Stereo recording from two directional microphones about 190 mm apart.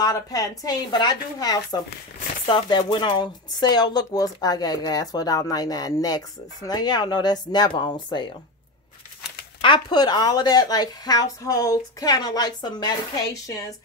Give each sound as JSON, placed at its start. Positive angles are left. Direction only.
{"t": 0.0, "sound": "speech", "side_deg": 20}
{"t": 9.6, "sound": "speech", "side_deg": 25}